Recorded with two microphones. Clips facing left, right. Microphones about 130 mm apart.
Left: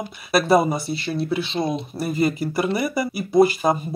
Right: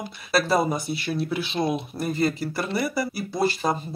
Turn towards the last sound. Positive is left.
turn(degrees=15)  # may be behind; listen again after turning